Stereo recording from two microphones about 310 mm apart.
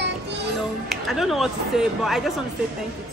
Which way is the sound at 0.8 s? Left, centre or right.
Centre.